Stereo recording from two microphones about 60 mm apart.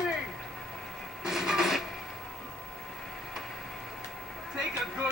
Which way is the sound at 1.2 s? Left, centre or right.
Centre.